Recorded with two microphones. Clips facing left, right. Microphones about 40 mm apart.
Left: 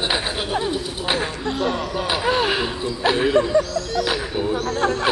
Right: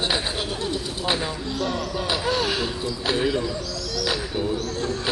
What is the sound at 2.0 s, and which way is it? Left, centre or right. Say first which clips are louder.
A man's voice: left 4 dB; left.